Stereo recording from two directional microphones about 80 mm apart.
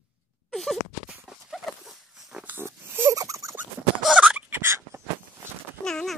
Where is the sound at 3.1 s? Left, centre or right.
Right.